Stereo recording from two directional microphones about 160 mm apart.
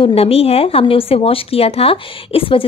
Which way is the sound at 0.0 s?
40° left (ahead or behind).